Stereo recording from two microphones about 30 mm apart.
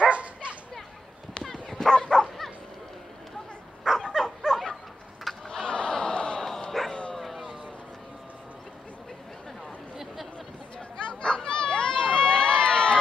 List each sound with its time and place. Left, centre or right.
0.0 s bow-wow: right
1.4 s dog: centre
3.9 s dog: centre
4.2 s dog: centre
5.3 s a sound: centre
5.7 s a sound: left
6.9 s bow-wow: left
11.0 s a sound: left
11.2 s crowd: left